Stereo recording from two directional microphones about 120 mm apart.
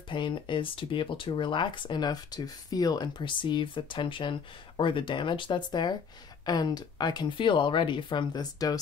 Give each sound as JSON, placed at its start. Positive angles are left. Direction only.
{"t": 0.1, "sound": "speech", "side_deg": 45}